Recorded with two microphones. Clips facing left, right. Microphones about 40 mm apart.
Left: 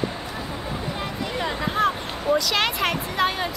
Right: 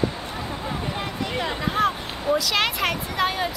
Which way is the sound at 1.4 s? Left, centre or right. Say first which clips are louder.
Even; centre.